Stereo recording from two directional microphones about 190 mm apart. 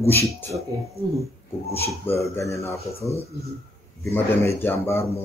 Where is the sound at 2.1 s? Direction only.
15° left (ahead or behind).